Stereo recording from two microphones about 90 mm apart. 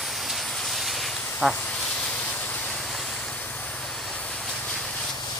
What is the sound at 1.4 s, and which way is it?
Speech, centre (ahead or behind).